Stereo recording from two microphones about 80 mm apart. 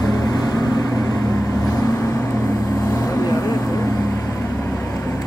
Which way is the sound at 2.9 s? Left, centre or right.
Left.